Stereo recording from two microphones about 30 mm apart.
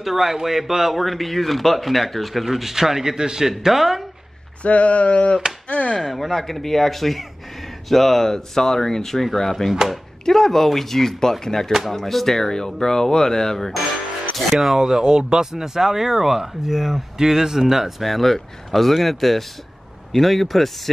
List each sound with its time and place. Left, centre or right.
0.0 s speech: centre
2.4 s speech: centre
4.6 s speech: left
5.7 s chop: left
5.9 s speech: centre
14.3 s speech: centre
14.8 s speech: right
18.0 s speech: centre